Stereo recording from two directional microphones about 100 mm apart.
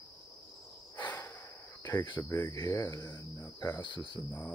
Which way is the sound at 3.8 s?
50° left (ahead or behind).